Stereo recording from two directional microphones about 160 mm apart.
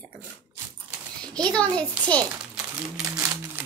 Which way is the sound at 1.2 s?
5° left (ahead or behind).